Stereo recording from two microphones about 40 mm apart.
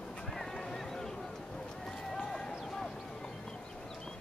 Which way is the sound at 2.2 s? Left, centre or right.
Centre.